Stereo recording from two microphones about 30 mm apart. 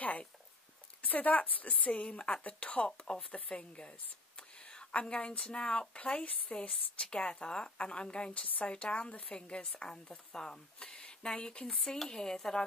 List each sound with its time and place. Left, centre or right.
1.0 s speech: left
2.0 s speech: left
3.1 s a woman's voice: left
4.4 s a sound: left
5.0 s a woman's voice: left
10.8 s a sound: left
11.2 s speech: left
11.6 s speech: centre